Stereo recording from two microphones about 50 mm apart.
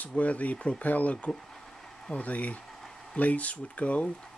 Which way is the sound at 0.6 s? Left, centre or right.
Centre.